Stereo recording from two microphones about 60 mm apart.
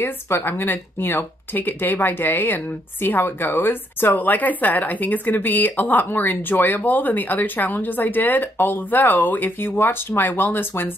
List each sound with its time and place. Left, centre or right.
0.4 s speech: left